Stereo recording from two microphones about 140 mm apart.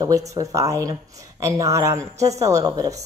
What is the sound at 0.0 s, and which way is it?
Speech, 25° right (ahead or behind).